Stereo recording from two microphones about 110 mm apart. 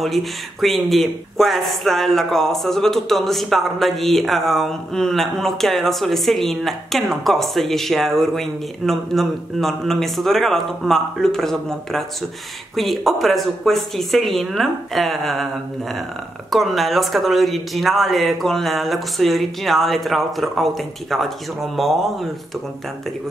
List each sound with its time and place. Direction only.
0.0 s speech: centre (ahead or behind)